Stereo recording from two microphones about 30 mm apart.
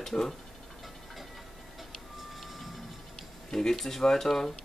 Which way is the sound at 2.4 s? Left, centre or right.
Centre.